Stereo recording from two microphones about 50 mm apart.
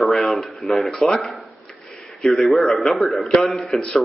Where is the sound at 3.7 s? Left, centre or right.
Centre.